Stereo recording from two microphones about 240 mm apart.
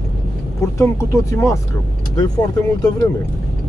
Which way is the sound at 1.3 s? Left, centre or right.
Centre.